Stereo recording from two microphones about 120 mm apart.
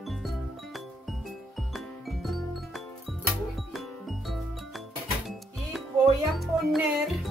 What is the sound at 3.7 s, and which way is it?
Music, centre (ahead or behind).